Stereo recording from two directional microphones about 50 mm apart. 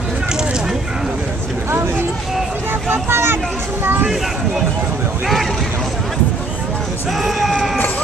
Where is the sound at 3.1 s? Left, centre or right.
Right.